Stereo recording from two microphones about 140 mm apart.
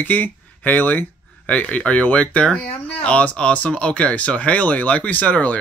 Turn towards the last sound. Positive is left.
turn(degrees=10)  # may be behind; listen again after turning